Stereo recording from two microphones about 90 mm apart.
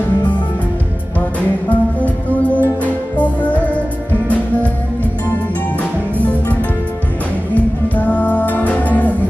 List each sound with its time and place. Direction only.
1.7 s music: 15° left (ahead or behind)
7.5 s music: 20° left (ahead or behind)